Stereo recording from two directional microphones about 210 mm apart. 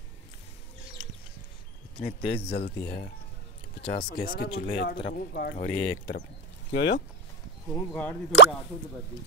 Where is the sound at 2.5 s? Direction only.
50° left (ahead or behind).